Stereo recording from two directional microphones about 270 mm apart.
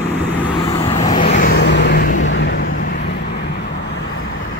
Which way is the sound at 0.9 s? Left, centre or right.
Left.